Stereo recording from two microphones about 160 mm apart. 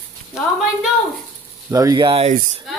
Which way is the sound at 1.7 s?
20° right (ahead or behind).